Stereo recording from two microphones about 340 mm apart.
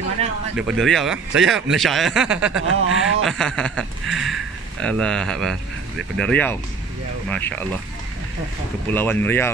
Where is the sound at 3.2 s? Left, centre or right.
Centre.